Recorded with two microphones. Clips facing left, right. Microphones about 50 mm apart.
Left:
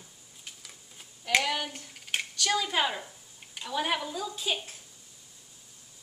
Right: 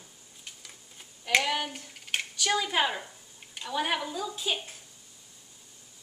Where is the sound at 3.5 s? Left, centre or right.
Centre.